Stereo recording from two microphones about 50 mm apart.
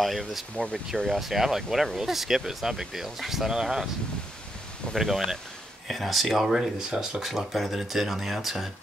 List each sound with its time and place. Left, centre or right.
0.0 s speech: centre
4.9 s speech: centre
7.2 s speech: centre